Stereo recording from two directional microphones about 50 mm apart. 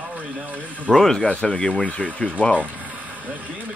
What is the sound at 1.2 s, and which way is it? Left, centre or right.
Speech, left.